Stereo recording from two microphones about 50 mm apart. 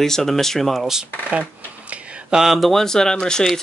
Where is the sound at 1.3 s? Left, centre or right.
Right.